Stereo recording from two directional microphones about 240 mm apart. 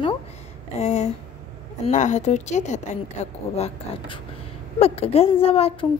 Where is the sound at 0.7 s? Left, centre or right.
Left.